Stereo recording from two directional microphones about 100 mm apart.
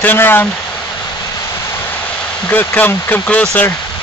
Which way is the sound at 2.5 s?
20° left (ahead or behind).